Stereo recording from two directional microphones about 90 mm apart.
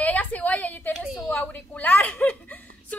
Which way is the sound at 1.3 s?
20° left (ahead or behind).